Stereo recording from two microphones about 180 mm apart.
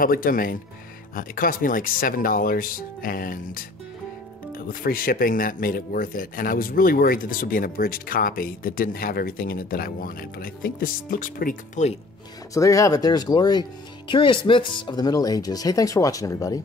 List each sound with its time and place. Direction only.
0.0 s speech: 50° left (ahead or behind)
12.5 s speech: 20° left (ahead or behind)